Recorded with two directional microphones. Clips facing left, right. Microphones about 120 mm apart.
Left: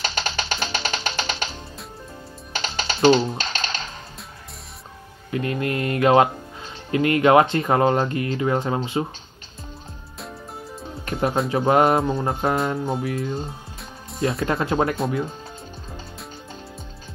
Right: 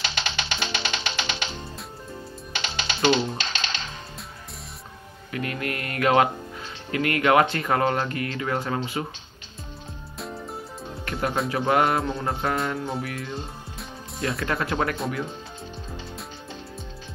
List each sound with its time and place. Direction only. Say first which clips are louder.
0.0 s music: left 3 dB; 40° left (ahead or behind)
5.3 s speech: left 5 dB; 25° left (ahead or behind)
11.1 s speech: left 4 dB; 25° left (ahead or behind)